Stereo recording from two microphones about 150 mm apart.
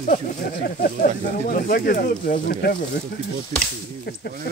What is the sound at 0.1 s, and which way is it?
Speech, 75° left (ahead or behind).